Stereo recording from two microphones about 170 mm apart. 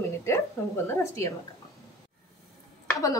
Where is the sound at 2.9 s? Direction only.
20° left (ahead or behind).